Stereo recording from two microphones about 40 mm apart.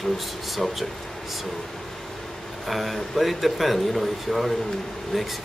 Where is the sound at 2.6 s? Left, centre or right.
Centre.